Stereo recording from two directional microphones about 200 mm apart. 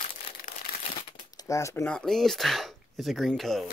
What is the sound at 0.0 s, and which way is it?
Crumpling, 45° left (ahead or behind).